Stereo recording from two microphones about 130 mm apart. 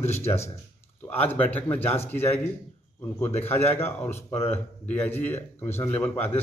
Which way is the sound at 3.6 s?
15° left (ahead or behind).